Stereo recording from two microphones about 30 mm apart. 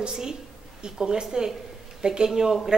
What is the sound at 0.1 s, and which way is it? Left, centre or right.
Speech, right.